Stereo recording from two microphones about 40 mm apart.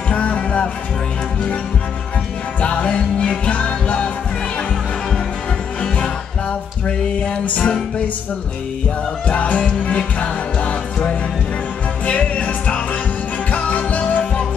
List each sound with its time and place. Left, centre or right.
0.1 s music: left
2.6 s music: left
7.4 s music: left
9.3 s music: left
10.2 s music: left
12.1 s music: left